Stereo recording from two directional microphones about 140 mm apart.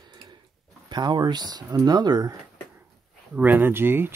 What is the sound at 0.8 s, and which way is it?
Speech, 30° right (ahead or behind).